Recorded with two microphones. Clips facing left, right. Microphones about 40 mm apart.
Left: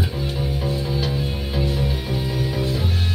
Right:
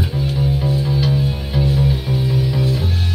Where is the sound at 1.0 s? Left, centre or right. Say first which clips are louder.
Right 5 dB; centre.